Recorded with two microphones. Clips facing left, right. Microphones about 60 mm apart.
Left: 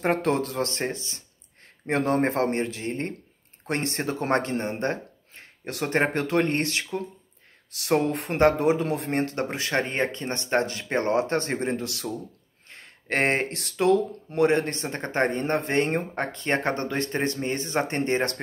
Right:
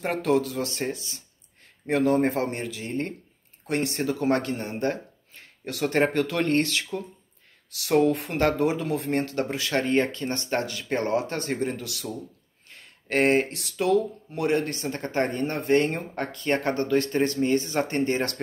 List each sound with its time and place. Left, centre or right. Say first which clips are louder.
0.0 s speech: even; left